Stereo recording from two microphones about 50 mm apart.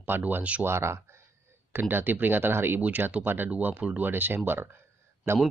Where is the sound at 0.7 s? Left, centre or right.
Right.